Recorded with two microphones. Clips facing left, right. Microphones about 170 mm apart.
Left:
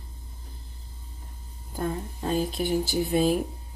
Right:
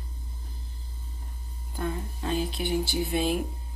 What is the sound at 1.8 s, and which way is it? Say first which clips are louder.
Speech: left 2 dB; 40° left (ahead or behind).